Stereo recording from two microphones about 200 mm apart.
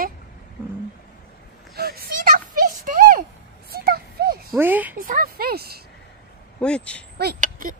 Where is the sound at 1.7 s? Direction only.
45° right (ahead or behind).